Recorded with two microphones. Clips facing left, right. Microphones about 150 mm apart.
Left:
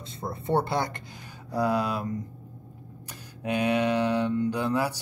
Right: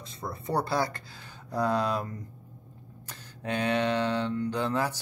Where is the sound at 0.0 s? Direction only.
25° left (ahead or behind).